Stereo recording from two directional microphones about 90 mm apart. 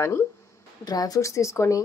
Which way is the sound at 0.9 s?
45° left (ahead or behind).